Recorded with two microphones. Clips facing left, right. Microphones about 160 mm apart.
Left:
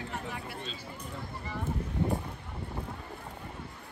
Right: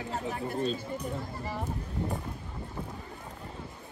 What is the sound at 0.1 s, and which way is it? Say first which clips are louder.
Speech: right 6 dB; 40° right (ahead or behind).